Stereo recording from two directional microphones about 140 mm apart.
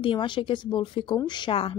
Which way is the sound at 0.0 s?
35° left (ahead or behind).